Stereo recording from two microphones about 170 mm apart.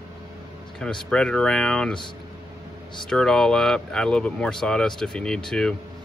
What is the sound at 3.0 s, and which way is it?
Speech, 5° left (ahead or behind).